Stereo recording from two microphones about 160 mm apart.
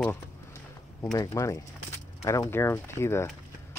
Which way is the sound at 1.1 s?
20° left (ahead or behind).